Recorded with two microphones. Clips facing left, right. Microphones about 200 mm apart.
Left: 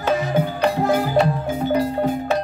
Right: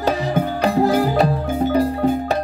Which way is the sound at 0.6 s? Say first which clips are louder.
Right 4 dB; 35° right (ahead or behind).